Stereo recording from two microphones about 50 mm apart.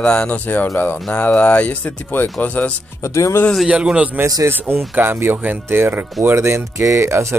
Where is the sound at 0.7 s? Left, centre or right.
Left.